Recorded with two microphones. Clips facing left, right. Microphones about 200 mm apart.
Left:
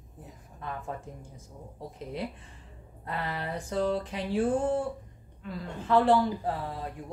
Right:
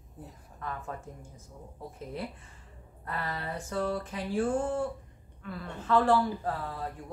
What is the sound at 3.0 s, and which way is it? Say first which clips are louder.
Speech: left 2 dB; 20° left (ahead or behind).